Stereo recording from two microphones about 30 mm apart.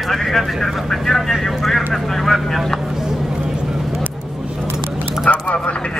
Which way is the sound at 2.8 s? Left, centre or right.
Centre.